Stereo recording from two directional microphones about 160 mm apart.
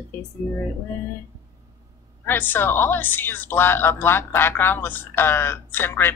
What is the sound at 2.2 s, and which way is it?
A woman's voice, 10° left (ahead or behind).